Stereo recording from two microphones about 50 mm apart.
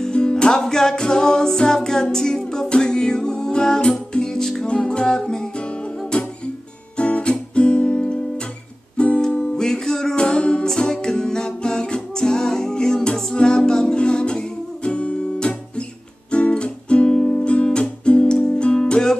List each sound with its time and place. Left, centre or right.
0.0 s music: centre
6.1 s music: left
9.6 s music: centre